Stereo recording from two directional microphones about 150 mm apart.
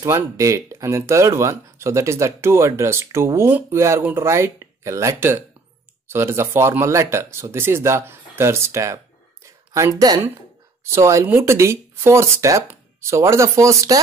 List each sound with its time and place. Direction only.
0.0 s speech: 20° right (ahead or behind)